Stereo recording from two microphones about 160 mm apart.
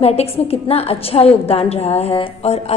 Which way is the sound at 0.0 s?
40° left (ahead or behind).